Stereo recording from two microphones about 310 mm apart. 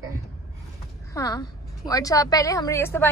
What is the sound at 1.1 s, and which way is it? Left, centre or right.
Speech, centre.